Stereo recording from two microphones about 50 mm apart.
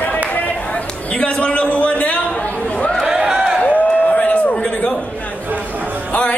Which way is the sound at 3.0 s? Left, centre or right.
Centre.